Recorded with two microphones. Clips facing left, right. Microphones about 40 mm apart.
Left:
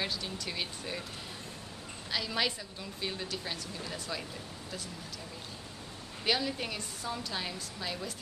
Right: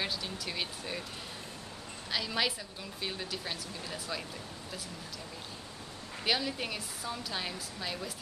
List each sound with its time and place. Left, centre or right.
0.0 s a woman's voice: centre
2.0 s a woman's voice: centre
6.2 s a woman's voice: centre